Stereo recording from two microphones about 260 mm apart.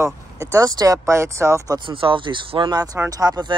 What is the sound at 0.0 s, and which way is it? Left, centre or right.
Speech, centre.